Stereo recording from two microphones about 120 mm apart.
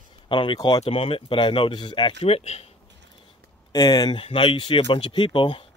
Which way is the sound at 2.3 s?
60° left (ahead or behind).